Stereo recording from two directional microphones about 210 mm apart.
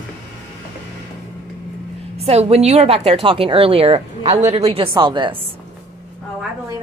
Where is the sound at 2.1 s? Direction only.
30° right (ahead or behind).